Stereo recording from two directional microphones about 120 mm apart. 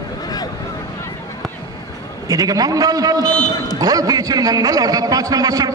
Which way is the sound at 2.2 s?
30° right (ahead or behind).